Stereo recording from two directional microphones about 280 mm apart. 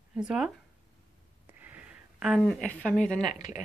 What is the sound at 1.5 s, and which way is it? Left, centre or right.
Speech, centre.